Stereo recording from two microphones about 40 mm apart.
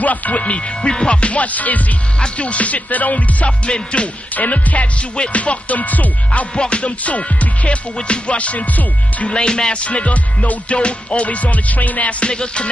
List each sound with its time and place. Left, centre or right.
0.0 s music: left
2.1 s music: left
4.4 s music: left
6.5 s music: left
6.8 s music: left
9.3 s music: left